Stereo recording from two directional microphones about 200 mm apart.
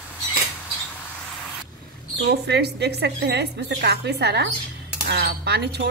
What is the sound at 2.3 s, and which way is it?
Speech, 55° right (ahead or behind).